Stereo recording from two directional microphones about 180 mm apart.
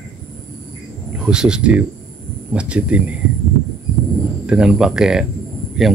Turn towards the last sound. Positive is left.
turn(degrees=0)  # may be behind; listen again after turning